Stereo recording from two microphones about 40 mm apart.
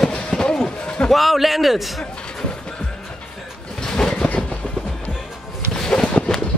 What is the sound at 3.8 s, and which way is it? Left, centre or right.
Train, centre.